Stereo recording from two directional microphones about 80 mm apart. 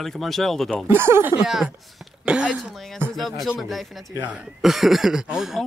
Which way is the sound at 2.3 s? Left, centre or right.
Centre.